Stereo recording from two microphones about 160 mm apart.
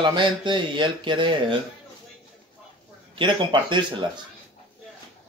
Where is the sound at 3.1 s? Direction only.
30° right (ahead or behind).